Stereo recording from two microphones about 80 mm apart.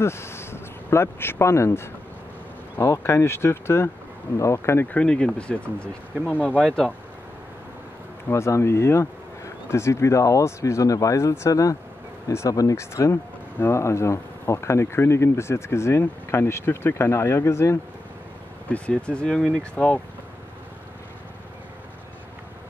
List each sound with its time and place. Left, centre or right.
0.0 s speech: left
4.8 s speech: centre
8.3 s speech: left
12.3 s speech: left
18.7 s speech: centre